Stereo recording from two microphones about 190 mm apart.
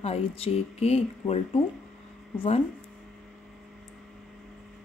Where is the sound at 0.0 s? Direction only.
35° left (ahead or behind).